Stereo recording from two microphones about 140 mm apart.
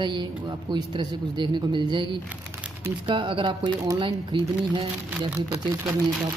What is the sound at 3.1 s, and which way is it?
Speech, 35° right (ahead or behind).